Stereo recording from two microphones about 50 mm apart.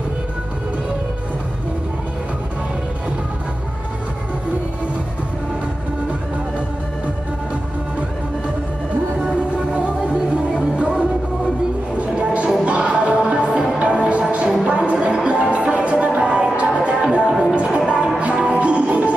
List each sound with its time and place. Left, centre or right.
9.3 s music: right